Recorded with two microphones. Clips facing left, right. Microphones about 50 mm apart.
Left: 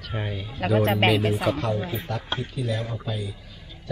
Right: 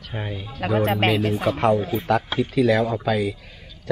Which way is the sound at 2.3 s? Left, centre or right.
Right.